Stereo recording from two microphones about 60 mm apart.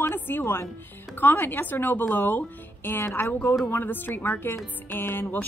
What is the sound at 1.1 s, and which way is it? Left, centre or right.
Speech, left.